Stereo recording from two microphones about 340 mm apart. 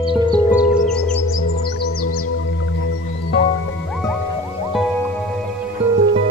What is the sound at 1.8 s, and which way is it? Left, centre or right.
Music, left.